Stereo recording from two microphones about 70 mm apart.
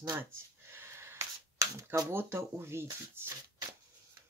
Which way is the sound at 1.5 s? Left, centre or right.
Right.